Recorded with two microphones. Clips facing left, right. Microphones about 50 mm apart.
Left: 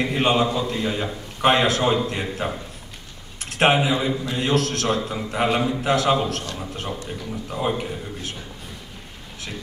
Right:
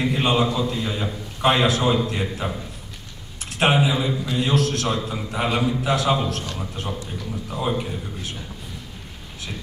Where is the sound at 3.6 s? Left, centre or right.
Left.